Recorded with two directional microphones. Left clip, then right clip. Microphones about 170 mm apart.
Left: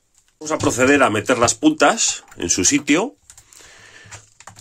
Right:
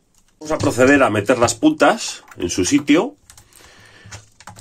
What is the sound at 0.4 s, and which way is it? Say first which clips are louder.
Speech: right 2 dB; 10° left (ahead or behind).